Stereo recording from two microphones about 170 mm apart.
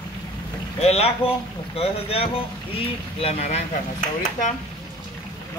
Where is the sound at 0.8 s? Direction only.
35° left (ahead or behind).